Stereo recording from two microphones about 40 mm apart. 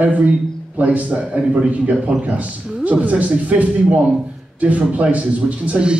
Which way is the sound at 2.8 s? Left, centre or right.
Right.